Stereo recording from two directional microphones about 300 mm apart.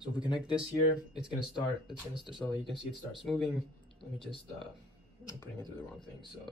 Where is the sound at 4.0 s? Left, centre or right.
Centre.